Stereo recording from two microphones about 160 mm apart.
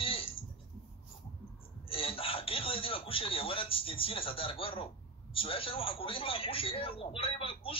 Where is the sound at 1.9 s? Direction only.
35° left (ahead or behind).